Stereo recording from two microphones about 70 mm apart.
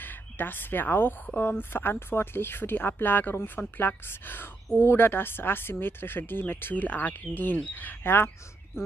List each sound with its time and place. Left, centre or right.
0.0 s speech: left